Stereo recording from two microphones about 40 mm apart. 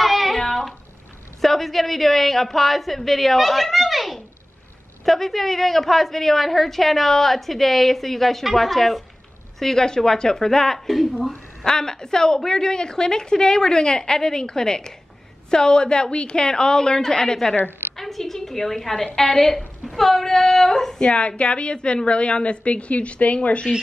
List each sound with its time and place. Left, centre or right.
0.0 s a sound: centre
0.4 s bathtub: centre
1.4 s a woman's voice: centre
11.0 s speech: centre
11.6 s a woman's voice: centre
17.9 s a sound: centre
19.1 s a woman's voice: centre
21.4 s a woman's voice: left